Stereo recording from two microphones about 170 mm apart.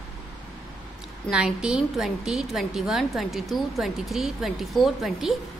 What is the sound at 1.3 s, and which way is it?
A woman's voice, 5° right (ahead or behind).